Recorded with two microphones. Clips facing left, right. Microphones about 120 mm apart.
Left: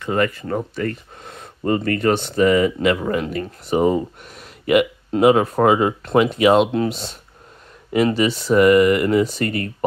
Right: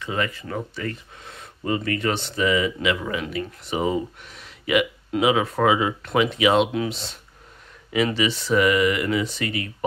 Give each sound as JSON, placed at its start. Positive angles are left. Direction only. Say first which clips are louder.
{"t": 0.0, "sound": "speech", "louder": "left 7 dB", "side_deg": 50}